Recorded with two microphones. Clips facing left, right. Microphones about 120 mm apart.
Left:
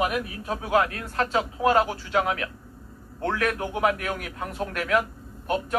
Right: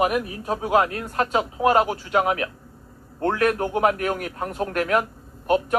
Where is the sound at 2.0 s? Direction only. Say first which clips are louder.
Right 3 dB; 50° right (ahead or behind).